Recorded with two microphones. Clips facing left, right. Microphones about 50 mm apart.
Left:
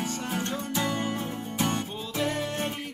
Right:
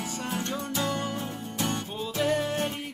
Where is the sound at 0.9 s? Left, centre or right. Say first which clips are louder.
Left 1 dB; left.